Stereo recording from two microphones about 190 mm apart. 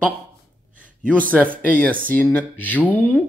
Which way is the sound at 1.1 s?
5° left (ahead or behind).